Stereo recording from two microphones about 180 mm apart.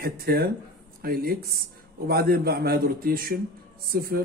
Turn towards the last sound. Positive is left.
turn(degrees=-55)  # may be behind; listen again after turning